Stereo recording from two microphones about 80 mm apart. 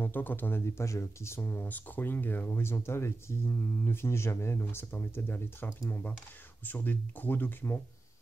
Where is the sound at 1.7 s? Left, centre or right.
Left.